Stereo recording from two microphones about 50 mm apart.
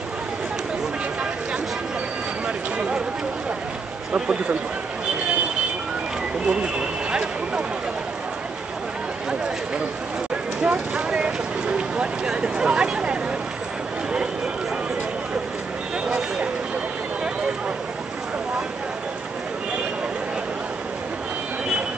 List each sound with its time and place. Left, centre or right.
4.1 s speech: right
6.4 s speech: centre
10.6 s speech: right
11.1 s speech: centre
16.1 s a sound: centre